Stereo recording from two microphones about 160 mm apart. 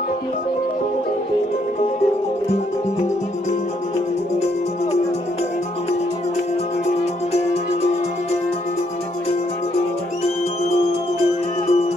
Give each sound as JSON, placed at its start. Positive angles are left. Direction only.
{"t": 10.9, "sound": "music", "side_deg": 40}